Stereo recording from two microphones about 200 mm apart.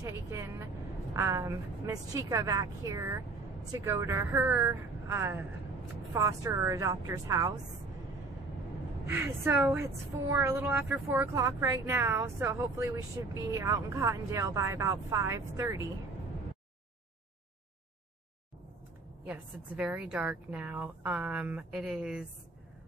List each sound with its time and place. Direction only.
0.0 s speech: 15° right (ahead or behind)
9.0 s speech: 10° right (ahead or behind)
19.2 s speech: 5° right (ahead or behind)